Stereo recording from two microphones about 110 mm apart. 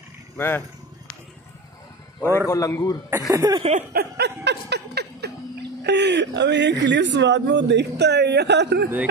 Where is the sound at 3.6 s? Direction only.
85° right.